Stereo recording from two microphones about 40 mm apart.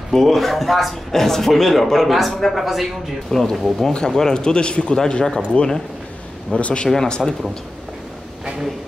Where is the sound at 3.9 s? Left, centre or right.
Centre.